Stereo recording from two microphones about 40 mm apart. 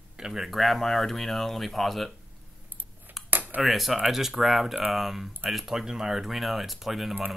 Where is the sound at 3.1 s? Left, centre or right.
Right.